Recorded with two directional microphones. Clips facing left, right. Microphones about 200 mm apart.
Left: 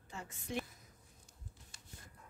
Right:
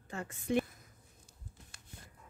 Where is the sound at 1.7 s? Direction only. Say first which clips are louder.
Right 1 dB; 60° right (ahead or behind).